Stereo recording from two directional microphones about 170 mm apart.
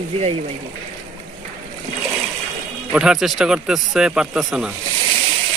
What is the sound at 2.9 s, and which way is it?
Speech, 5° right (ahead or behind).